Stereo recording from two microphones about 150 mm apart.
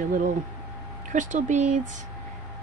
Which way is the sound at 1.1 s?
55° right (ahead or behind).